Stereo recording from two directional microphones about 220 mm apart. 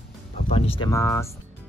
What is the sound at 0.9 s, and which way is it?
Speech, 10° left (ahead or behind).